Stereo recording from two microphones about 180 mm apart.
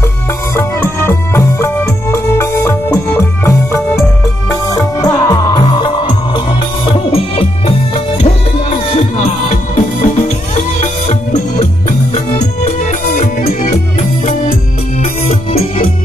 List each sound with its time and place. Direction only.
0.6 s music: 15° left (ahead or behind); by 13.7 s 45° left (ahead or behind)